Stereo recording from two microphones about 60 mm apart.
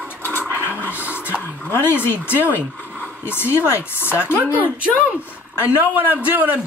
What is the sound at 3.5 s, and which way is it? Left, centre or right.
Speech, right.